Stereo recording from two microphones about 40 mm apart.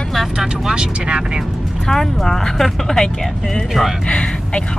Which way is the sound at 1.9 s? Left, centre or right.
Centre.